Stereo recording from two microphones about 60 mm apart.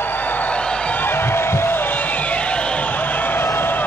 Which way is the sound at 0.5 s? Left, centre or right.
Left.